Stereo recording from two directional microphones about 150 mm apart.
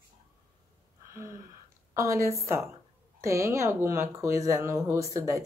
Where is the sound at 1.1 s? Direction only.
20° right (ahead or behind).